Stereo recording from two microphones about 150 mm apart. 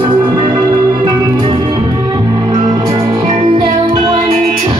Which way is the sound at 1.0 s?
20° right (ahead or behind).